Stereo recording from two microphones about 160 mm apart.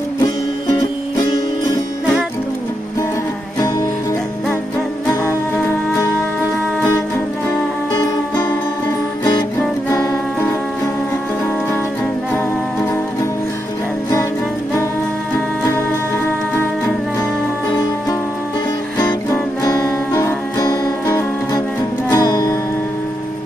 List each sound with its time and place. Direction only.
9.8 s music: 20° left (ahead or behind)
18.9 s music: 25° left (ahead or behind)